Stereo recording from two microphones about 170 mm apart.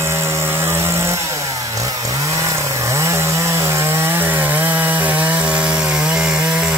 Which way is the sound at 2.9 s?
15° right (ahead or behind).